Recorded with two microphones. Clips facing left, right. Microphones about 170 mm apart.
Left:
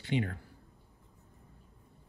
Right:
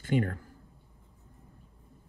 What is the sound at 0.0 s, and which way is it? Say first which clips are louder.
Speech: right 4 dB; 50° right (ahead or behind).